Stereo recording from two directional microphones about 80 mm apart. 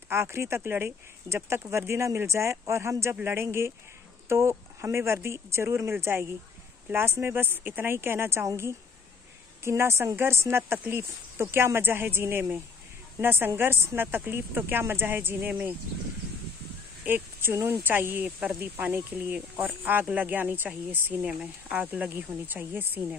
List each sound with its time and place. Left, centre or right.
0.1 s speech: right
9.6 s speech: right
17.0 s speech: right